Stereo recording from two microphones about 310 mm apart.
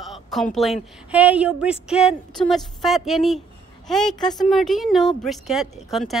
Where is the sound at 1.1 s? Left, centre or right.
Centre.